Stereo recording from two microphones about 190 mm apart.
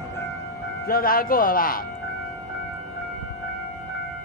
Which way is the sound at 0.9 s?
50° left (ahead or behind).